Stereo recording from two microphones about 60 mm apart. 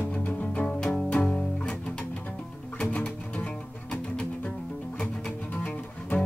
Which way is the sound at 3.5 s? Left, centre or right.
Centre.